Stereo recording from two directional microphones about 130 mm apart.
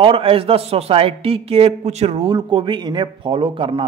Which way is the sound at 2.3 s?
40° right (ahead or behind).